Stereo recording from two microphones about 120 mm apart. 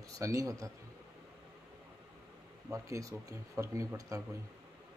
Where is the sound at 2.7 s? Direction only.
25° right (ahead or behind).